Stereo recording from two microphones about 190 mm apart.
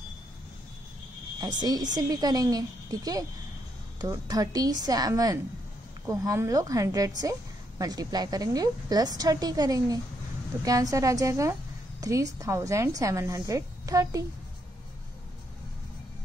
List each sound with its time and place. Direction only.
1.4 s a woman's voice: 20° right (ahead or behind)